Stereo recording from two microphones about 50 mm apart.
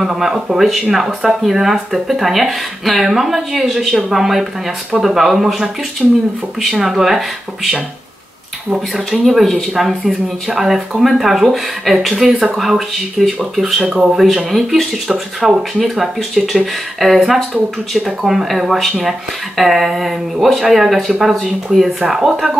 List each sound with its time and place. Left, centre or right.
0.0 s speech: centre
6.0 s speech: centre
6.7 s speech: centre
8.9 s speech: centre
13.8 s speech: centre
14.1 s speech: centre